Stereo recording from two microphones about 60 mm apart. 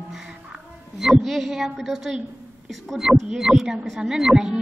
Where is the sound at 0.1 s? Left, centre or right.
Centre.